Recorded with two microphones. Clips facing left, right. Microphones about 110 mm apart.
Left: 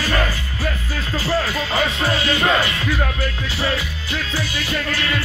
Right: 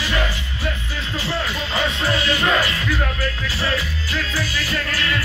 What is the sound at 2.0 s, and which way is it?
Music, 30° right (ahead or behind).